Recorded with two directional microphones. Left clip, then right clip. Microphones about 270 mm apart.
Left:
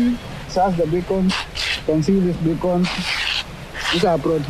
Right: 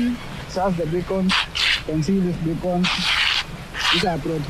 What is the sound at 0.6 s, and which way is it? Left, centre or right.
Speech, centre.